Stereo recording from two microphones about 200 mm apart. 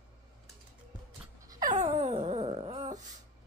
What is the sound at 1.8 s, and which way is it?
Wail, 35° right (ahead or behind).